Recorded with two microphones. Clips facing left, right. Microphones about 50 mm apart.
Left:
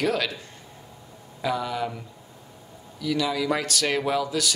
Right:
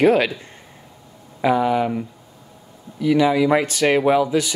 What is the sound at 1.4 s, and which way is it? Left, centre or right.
Speech, right.